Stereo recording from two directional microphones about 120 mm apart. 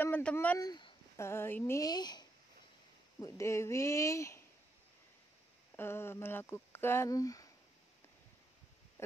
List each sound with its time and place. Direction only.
0.0 s a sound: 10° left (ahead or behind)
0.6 s speech: 35° left (ahead or behind)
1.1 s speech: 20° left (ahead or behind)
1.9 s speech: 35° left (ahead or behind)
3.2 s speech: 25° left (ahead or behind)
5.8 s speech: 20° left (ahead or behind)